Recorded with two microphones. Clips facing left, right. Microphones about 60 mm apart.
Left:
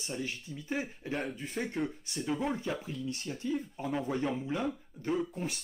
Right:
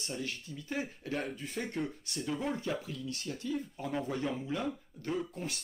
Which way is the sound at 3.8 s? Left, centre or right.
Centre.